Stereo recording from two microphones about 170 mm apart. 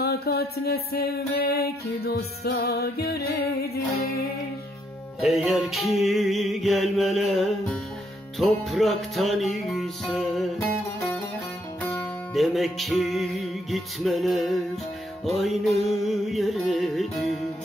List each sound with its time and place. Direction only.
0.0 s music: 70° left (ahead or behind)
5.2 s music: centre (ahead or behind)